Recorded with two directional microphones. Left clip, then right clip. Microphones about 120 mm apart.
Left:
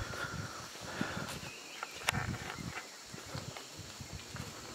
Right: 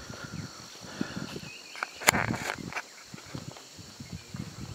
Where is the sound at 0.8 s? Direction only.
10° left (ahead or behind).